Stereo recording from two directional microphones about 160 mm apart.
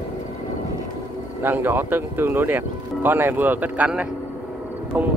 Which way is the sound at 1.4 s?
15° right (ahead or behind).